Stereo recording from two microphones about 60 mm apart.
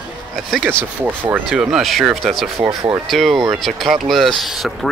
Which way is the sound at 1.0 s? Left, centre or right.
Right.